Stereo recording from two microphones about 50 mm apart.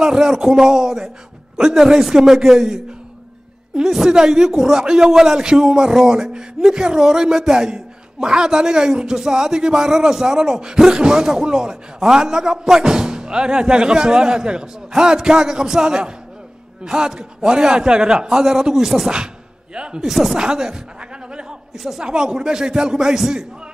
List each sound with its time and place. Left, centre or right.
0.0 s a man's voice: centre
19.1 s speech: centre
20.1 s speech: centre
20.3 s a sound: centre
21.7 s a man's voice: centre